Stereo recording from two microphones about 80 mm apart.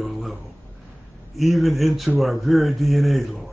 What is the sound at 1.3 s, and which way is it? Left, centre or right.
Speech, centre.